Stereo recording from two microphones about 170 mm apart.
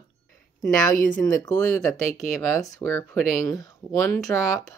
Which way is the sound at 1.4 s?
15° left (ahead or behind).